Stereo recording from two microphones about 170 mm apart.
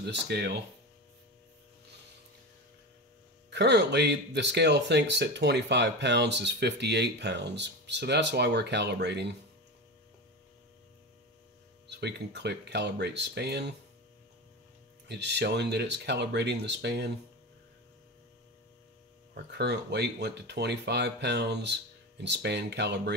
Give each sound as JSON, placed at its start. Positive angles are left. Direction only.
{"t": 0.0, "sound": "speech", "side_deg": -80}
{"t": 3.4, "sound": "speech", "side_deg": -90}
{"t": 11.9, "sound": "speech", "side_deg": -85}
{"t": 15.0, "sound": "speech", "side_deg": -90}
{"t": 19.3, "sound": "speech", "side_deg": -85}